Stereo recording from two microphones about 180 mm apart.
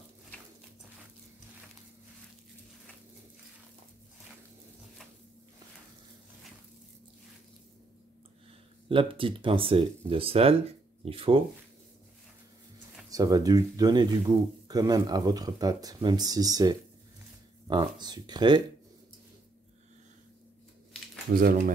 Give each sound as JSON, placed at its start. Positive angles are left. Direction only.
{"t": 8.8, "sound": "speech", "side_deg": -30}
{"t": 13.1, "sound": "speech", "side_deg": -20}
{"t": 21.4, "sound": "speech", "side_deg": -55}